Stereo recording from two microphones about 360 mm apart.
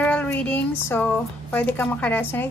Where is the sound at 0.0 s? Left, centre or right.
Centre.